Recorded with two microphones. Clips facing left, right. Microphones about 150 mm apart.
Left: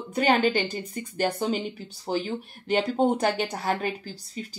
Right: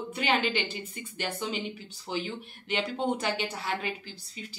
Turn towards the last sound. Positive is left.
turn(degrees=40)  # may be behind; listen again after turning